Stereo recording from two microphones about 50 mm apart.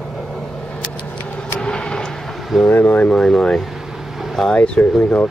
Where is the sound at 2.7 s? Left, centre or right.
Left.